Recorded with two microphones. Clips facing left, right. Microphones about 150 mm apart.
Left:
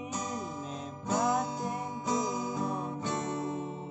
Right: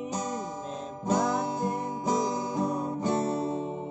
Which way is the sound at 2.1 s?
25° right (ahead or behind).